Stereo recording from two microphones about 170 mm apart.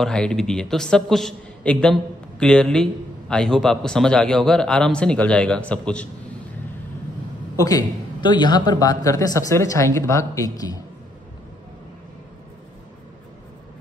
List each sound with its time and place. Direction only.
0.0 s a man's voice: 5° left (ahead or behind)
7.5 s a man's voice: 20° left (ahead or behind)